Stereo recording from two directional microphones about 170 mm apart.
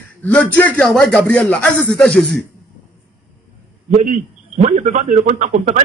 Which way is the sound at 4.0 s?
45° right (ahead or behind).